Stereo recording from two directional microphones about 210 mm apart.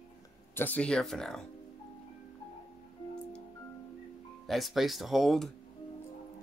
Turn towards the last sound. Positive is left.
turn(degrees=0)  # may be behind; listen again after turning